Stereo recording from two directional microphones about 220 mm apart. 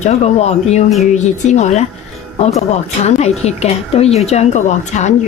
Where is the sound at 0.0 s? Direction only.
30° left (ahead or behind).